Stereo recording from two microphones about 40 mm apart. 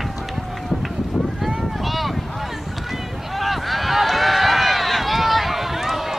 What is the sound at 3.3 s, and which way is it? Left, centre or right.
Run, centre.